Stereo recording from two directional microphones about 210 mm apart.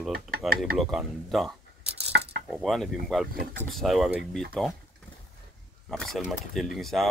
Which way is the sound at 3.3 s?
45° right (ahead or behind).